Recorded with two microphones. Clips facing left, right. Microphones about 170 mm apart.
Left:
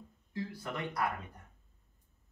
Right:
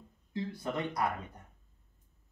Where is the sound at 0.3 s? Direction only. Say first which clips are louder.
Right 3 dB; 20° right (ahead or behind).